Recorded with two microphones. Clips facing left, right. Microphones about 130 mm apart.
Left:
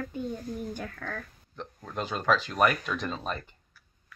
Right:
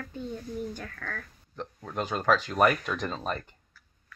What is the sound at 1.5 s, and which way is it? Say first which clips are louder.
Speech: right 2 dB; 15° right (ahead or behind).